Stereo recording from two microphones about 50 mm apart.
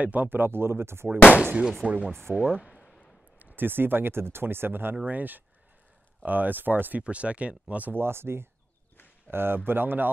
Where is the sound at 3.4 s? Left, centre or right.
Right.